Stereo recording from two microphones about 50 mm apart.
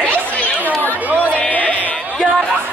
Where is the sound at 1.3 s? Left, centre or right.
Left.